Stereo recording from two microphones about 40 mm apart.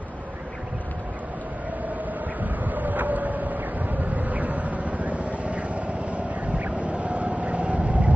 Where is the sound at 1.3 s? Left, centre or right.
Right.